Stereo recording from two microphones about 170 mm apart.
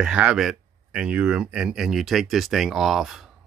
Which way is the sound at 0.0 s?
5° right (ahead or behind).